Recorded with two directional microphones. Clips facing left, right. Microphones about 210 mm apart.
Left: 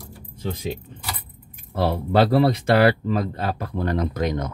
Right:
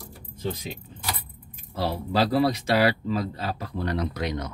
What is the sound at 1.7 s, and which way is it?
Speech, 55° left (ahead or behind).